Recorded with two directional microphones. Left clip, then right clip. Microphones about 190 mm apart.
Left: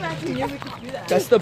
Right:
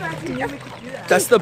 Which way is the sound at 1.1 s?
40° right (ahead or behind).